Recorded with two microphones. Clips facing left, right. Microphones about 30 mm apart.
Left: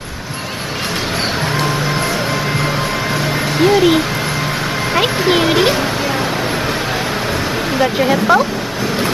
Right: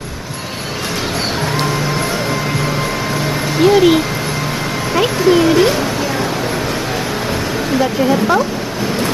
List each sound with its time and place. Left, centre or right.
3.5 s speech: centre
4.9 s speech: left
5.3 s speech: left
7.8 s speech: centre